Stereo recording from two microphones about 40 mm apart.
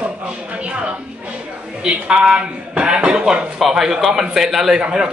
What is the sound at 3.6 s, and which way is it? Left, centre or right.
Speech, centre.